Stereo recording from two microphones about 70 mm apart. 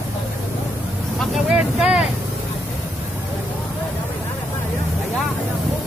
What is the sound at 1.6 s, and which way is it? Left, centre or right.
Speech, centre.